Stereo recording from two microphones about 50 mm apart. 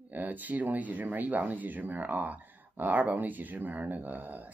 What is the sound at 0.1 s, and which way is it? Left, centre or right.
Speech, right.